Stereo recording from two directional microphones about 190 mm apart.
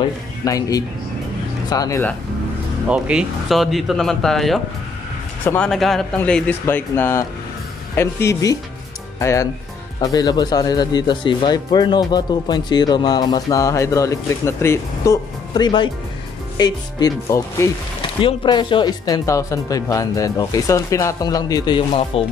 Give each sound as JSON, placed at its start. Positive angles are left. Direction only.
{"t": 0.5, "sound": "speech", "side_deg": 20}
{"t": 2.9, "sound": "speech", "side_deg": -5}